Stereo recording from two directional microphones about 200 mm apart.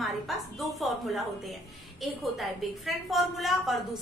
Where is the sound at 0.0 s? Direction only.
Centre (ahead or behind).